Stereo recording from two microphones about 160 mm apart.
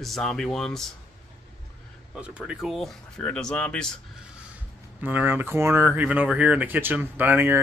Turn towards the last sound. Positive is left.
turn(degrees=-10)  # may be behind; listen again after turning